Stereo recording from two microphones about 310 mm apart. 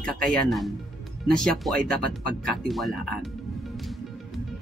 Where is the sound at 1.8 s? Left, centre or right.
Right.